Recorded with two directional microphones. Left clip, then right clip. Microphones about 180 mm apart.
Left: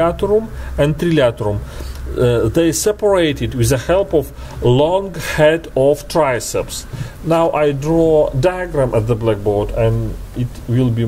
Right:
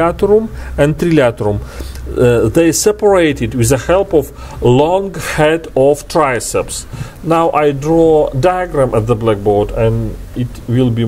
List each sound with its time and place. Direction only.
0.0 s speech: 30° right (ahead or behind)